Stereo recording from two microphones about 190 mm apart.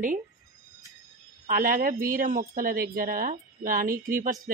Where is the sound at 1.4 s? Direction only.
45° right (ahead or behind).